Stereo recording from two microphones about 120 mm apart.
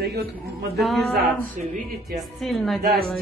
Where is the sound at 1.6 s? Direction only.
90° right.